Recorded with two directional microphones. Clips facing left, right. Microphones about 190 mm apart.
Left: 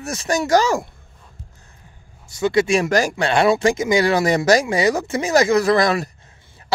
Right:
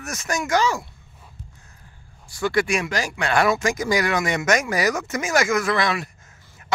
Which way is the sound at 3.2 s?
30° left (ahead or behind).